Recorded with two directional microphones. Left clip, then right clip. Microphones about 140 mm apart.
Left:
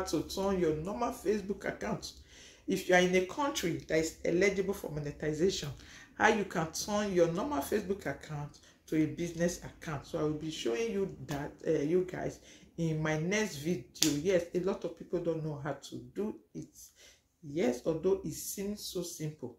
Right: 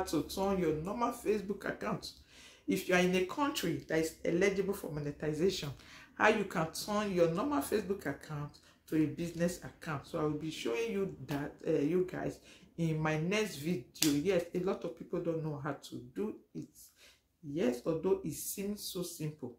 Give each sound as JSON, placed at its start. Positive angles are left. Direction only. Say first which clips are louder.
{"t": 0.0, "sound": "speech", "louder": "left 1 dB", "side_deg": -15}